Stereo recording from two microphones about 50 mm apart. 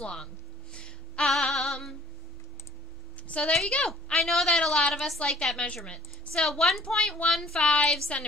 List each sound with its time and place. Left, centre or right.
0.0 s speech: centre
0.7 s music: centre
1.3 s female singing: centre
3.3 s a woman's voice: left
4.1 s a woman's voice: centre